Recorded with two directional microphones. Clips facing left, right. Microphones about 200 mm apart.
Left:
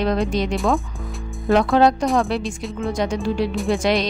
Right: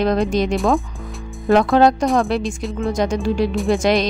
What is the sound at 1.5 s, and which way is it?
A woman's voice, 45° right (ahead or behind).